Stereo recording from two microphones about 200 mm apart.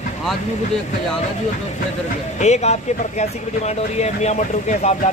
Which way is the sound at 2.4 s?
35° left (ahead or behind).